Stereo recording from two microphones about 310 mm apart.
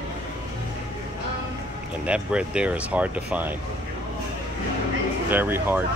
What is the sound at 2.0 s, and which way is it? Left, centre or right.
Speech, centre.